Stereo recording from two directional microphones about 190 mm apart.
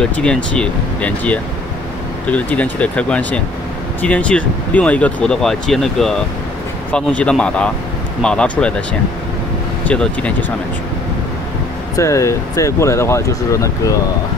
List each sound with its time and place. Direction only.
0.0 s speech: 5° left (ahead or behind)
9.8 s speech: 5° left (ahead or behind)
12.0 s speech: 15° left (ahead or behind)